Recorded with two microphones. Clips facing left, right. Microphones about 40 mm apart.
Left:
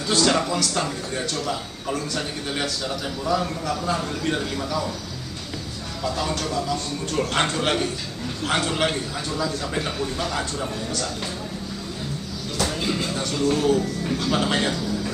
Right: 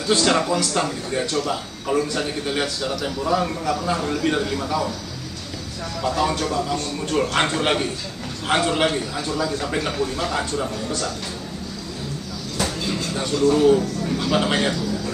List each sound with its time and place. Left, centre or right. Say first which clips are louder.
0.1 s a man's voice: right 2 dB; centre
6.0 s a man's voice: right 4 dB; centre
9.5 s a man's voice: right 3 dB; centre
13.6 s a man's voice: right 4 dB; centre